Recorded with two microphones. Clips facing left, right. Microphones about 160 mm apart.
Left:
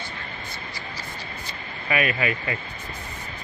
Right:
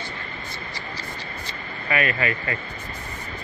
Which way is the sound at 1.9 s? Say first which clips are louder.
Even; 15° left (ahead or behind).